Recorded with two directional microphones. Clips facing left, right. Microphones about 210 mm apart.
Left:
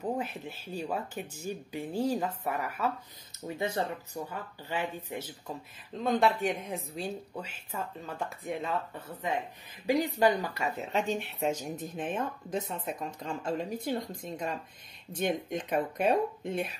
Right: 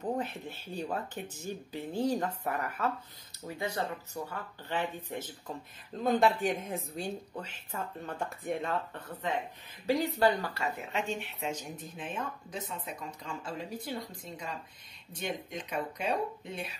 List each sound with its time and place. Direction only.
0.0 s speech: 10° left (ahead or behind)
3.4 s speech: 25° left (ahead or behind)
5.9 s a woman's voice: centre (ahead or behind); by 10.7 s 15° left (ahead or behind)
10.9 s speech: 35° left (ahead or behind); by 16.7 s 50° left (ahead or behind)